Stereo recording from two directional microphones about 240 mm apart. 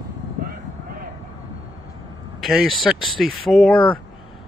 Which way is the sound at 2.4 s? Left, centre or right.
Centre.